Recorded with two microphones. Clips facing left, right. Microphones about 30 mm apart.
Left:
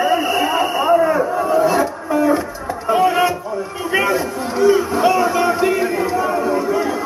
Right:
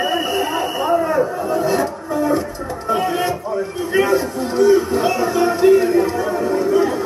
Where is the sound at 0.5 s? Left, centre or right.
Left.